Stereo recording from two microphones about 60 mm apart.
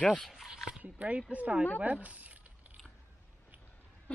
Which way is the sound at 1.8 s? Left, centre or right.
Right.